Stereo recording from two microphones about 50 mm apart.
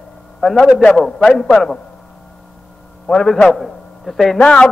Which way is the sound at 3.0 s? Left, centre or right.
Centre.